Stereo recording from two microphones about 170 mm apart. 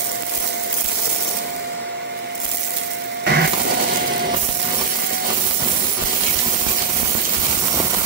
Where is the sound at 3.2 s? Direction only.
75° right (ahead or behind).